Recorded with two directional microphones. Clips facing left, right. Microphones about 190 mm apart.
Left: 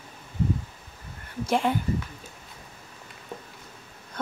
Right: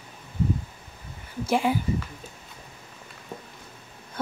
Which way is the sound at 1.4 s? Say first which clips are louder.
Right 1 dB; 5° right (ahead or behind).